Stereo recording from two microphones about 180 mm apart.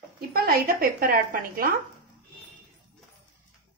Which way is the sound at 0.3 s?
55° right (ahead or behind).